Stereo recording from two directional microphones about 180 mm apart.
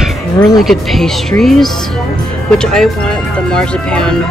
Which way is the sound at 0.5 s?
Centre (ahead or behind).